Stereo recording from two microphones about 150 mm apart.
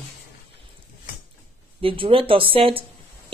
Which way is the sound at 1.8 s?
35° right (ahead or behind).